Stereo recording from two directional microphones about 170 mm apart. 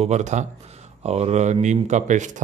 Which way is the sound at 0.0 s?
45° right (ahead or behind).